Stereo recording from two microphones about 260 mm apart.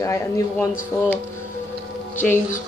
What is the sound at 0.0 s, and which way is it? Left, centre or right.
Speech, centre.